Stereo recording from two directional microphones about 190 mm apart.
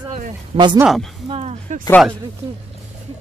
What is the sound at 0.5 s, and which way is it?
Speech, 25° right (ahead or behind).